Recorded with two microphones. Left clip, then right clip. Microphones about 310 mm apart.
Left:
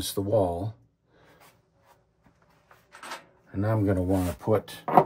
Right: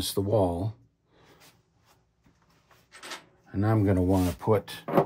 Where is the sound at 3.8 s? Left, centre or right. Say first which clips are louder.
Right 1 dB; right.